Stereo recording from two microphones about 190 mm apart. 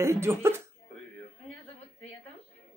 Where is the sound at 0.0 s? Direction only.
15° right (ahead or behind).